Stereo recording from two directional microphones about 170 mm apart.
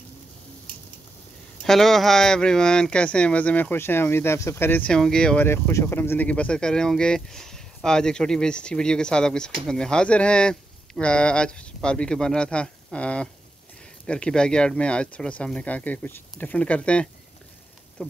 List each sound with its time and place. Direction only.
1.6 s speech: centre (ahead or behind)